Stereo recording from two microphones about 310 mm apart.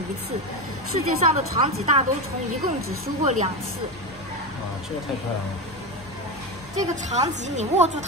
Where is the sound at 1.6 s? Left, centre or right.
Centre.